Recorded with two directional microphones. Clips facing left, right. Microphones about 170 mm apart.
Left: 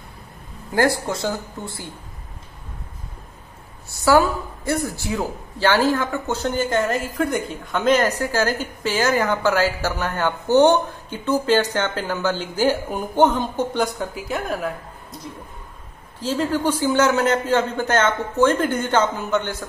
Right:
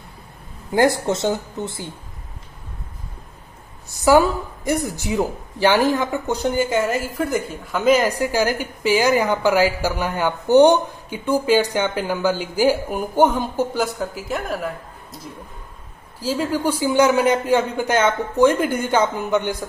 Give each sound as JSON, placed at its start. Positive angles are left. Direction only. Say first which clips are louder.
{"t": 0.7, "sound": "speech", "louder": "right 3 dB", "side_deg": -20}
{"t": 3.9, "sound": "a woman's voice", "louder": "right 2 dB", "side_deg": -15}
{"t": 16.2, "sound": "a woman's voice", "louder": "even", "side_deg": -10}